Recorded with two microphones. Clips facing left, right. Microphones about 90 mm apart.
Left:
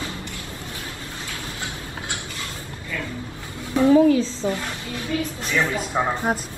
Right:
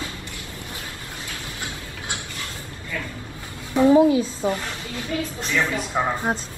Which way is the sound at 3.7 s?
20° right (ahead or behind).